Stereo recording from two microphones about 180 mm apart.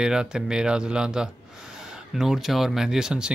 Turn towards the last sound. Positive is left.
turn(degrees=-5)  # may be behind; listen again after turning